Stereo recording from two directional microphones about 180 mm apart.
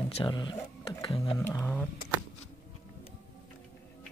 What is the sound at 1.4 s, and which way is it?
Speech, 10° left (ahead or behind).